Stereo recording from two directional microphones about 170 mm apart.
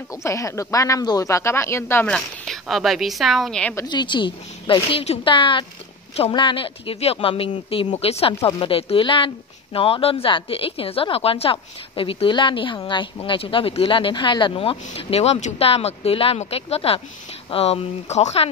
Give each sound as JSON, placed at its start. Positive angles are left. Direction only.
{"t": 0.1, "sound": "speech", "side_deg": 20}
{"t": 2.0, "sound": "speech", "side_deg": 5}
{"t": 3.7, "sound": "a woman's voice", "side_deg": 25}